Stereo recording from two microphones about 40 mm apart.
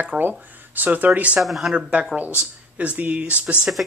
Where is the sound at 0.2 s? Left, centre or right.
Right.